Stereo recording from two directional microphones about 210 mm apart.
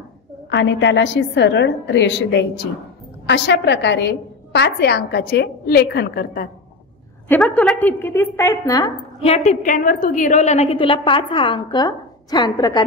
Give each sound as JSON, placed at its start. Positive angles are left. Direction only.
{"t": 0.5, "sound": "a woman's voice", "side_deg": 55}
{"t": 7.2, "sound": "a woman's voice", "side_deg": 5}
{"t": 9.2, "sound": "a woman's voice", "side_deg": 30}